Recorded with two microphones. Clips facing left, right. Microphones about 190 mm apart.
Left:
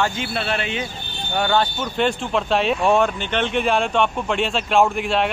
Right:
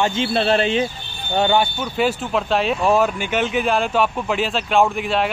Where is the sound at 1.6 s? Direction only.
5° right (ahead or behind).